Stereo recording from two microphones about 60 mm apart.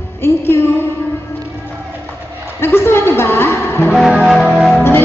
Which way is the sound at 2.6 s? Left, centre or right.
Left.